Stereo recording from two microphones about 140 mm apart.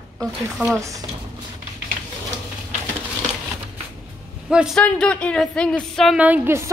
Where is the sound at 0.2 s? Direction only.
Centre (ahead or behind).